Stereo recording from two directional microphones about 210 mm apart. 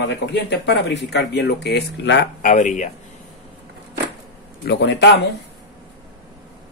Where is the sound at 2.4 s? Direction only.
40° left (ahead or behind).